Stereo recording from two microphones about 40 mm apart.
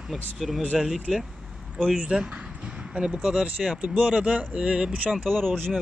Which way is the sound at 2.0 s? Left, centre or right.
Right.